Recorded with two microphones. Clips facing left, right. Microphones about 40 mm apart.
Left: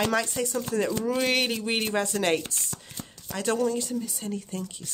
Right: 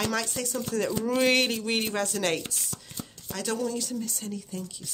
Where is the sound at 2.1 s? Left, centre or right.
Left.